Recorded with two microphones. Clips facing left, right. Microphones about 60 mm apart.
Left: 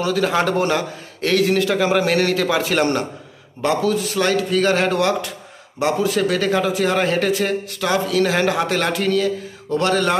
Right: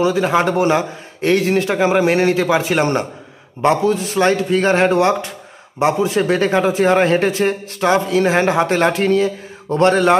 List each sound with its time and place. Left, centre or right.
0.0 s a man's voice: centre